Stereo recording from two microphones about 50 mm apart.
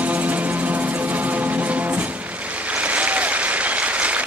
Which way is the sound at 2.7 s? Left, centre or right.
Right.